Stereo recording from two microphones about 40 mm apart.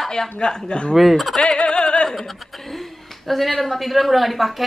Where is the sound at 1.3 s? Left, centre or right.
Left.